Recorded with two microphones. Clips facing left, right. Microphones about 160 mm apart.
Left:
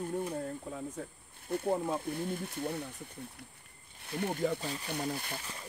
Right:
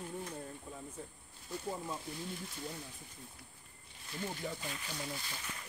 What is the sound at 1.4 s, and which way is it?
Speech, 60° left (ahead or behind).